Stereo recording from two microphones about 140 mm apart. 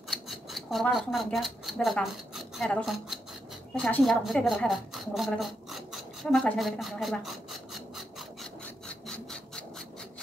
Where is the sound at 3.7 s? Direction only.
5° left (ahead or behind).